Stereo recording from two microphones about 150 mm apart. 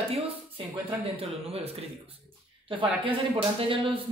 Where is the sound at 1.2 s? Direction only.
40° right (ahead or behind).